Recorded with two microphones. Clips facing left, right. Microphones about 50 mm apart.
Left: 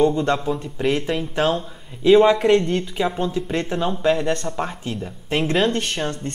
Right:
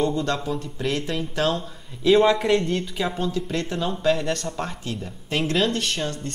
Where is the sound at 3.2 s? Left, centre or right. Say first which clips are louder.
Left 3 dB; left.